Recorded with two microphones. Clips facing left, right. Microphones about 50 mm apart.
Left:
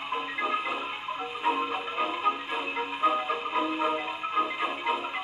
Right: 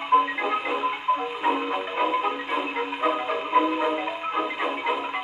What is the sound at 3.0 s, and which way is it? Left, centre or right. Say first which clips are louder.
Marimba: right 1 dB; right.